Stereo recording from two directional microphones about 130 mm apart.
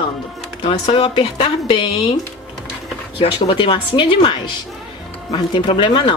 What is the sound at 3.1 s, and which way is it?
Speech, 45° left (ahead or behind).